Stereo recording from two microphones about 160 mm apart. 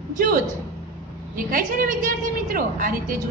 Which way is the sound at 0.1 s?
60° right (ahead or behind).